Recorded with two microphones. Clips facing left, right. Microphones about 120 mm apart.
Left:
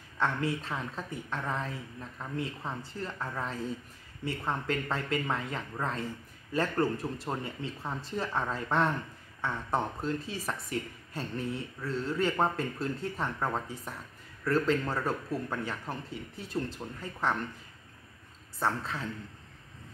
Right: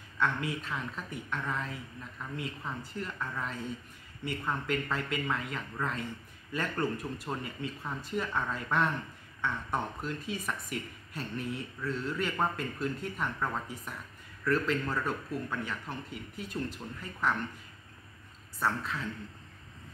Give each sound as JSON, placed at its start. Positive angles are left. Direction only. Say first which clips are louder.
{"t": 0.2, "sound": "speech", "louder": "left 1 dB", "side_deg": 30}
{"t": 18.6, "sound": "speech", "louder": "left 1 dB", "side_deg": 30}